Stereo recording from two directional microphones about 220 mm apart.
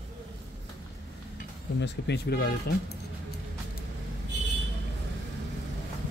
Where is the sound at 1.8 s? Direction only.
50° left (ahead or behind).